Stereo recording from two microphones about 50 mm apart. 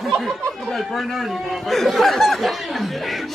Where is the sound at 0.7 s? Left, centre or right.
Centre.